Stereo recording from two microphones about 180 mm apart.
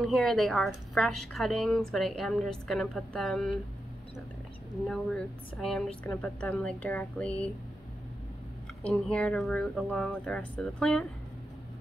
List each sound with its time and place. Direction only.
0.0 s a woman's voice: centre (ahead or behind)
4.8 s a woman's voice: 5° left (ahead or behind)
8.8 s a woman's voice: 5° left (ahead or behind)